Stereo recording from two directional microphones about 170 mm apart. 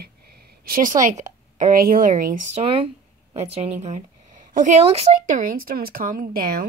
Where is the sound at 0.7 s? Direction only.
55° right (ahead or behind).